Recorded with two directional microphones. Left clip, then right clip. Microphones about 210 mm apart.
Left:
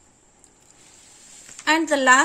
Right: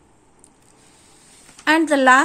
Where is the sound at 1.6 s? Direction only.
20° right (ahead or behind).